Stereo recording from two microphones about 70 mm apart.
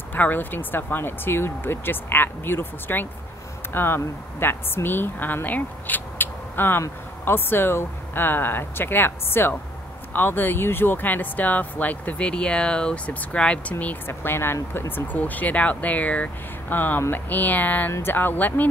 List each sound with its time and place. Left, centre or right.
0.1 s speech: left
14.0 s speech: left